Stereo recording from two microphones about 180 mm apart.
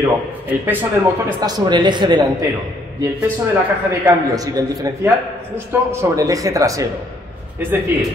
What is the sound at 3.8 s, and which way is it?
A man's voice, 15° right (ahead or behind).